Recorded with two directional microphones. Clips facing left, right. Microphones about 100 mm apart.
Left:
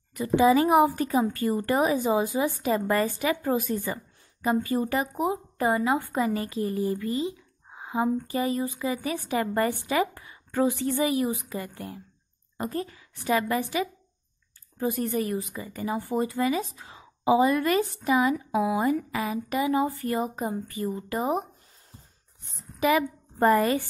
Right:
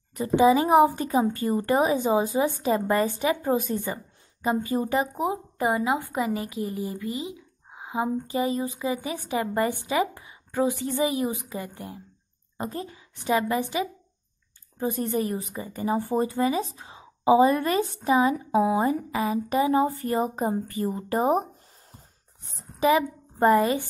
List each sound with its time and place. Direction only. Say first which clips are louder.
0.4 s a woman's voice: right 2 dB; 20° right (ahead or behind); by 21.5 s 40° right (ahead or behind)
22.6 s a woman's voice: right 2 dB; 30° right (ahead or behind)